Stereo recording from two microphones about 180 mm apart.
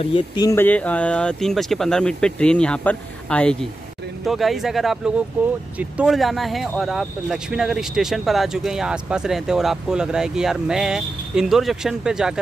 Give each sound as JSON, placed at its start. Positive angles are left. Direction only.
{"t": 0.0, "sound": "speech", "side_deg": 30}
{"t": 0.5, "sound": "speech", "side_deg": 10}